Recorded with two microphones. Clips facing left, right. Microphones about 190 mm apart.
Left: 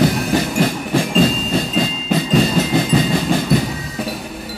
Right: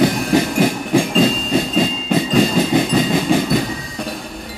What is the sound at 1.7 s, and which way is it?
Music, centre (ahead or behind).